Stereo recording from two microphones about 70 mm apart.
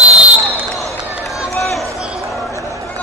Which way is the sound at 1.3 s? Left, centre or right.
Left.